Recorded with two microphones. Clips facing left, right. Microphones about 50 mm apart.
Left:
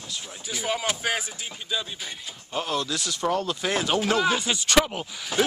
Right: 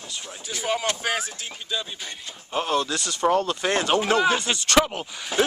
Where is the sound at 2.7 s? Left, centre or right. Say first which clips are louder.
Right 3 dB; centre.